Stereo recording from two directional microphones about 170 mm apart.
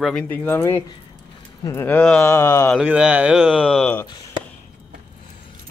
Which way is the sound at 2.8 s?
5° right (ahead or behind).